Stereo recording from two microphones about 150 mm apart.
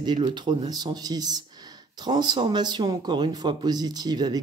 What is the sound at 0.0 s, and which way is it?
Speech, 30° right (ahead or behind).